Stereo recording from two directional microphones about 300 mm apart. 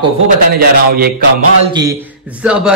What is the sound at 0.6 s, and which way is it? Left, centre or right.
Speech, right.